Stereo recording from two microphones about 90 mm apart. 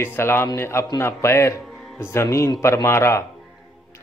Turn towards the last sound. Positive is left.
turn(degrees=30)  # may be behind; listen again after turning